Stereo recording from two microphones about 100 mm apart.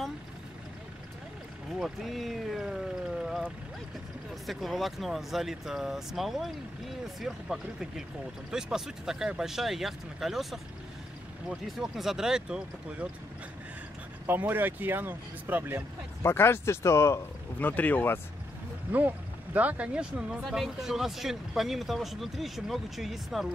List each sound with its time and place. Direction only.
1.8 s speech: centre (ahead or behind)
14.2 s speech: 20° right (ahead or behind)
16.2 s speech: 25° left (ahead or behind)
18.9 s speech: 15° right (ahead or behind); by 23.5 s centre (ahead or behind)